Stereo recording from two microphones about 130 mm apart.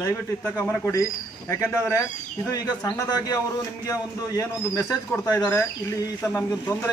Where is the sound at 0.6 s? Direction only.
20° left (ahead or behind).